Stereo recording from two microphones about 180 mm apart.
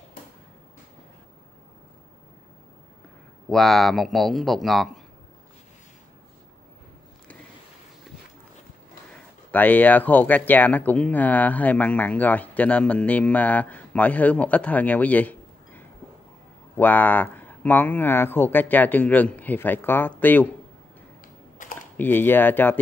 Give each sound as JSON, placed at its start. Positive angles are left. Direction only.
{"t": 3.4, "sound": "speech", "side_deg": 0}
{"t": 9.5, "sound": "speech", "side_deg": 10}
{"t": 21.6, "sound": "typing", "side_deg": 50}
{"t": 21.9, "sound": "speech", "side_deg": 10}